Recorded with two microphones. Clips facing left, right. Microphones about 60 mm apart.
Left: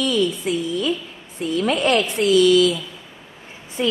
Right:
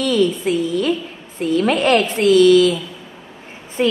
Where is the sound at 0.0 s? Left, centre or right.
Right.